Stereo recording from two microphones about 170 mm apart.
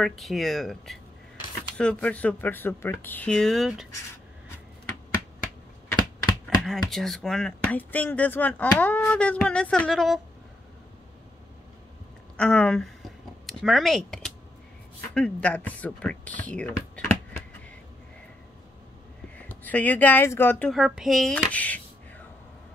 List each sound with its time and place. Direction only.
0.2 s speech: centre (ahead or behind)
6.6 s speech: centre (ahead or behind)
12.4 s speech: 5° left (ahead or behind)
19.3 s speech: 10° left (ahead or behind)
20.7 s speech: centre (ahead or behind)